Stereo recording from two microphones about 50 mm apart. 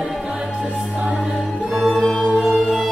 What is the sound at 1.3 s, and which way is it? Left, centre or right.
Music, centre.